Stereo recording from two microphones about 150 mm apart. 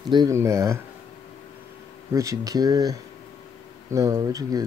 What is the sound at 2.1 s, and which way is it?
Speech, 20° right (ahead or behind).